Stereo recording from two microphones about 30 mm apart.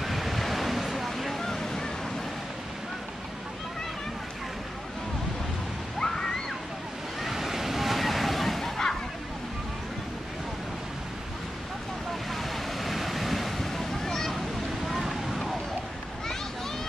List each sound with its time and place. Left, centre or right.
0.0 s waves: centre
5.9 s a sound: centre
7.2 s waves: centre
12.3 s waves: centre